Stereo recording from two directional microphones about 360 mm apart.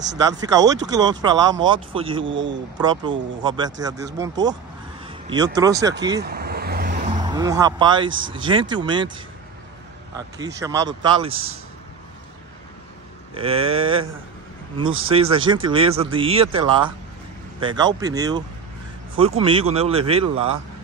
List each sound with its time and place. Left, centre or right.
0.2 s speech: centre
2.2 s speech: right
2.8 s speech: centre
6.2 s vehicle: right
7.2 s speech: centre
11.2 s speech: right
13.3 s speech: centre
15.0 s speech: centre